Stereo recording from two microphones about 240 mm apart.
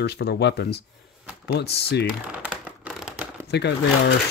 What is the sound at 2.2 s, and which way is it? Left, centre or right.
Crumpling, centre.